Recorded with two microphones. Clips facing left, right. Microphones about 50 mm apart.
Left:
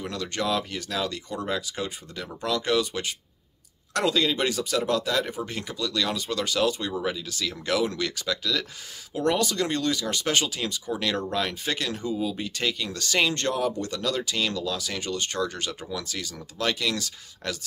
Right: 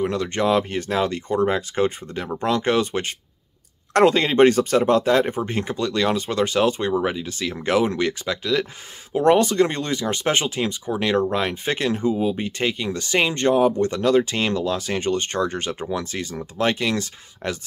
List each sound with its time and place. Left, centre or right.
0.0 s speech: right